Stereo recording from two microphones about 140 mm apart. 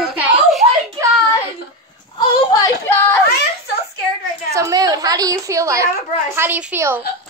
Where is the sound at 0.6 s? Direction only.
45° right (ahead or behind).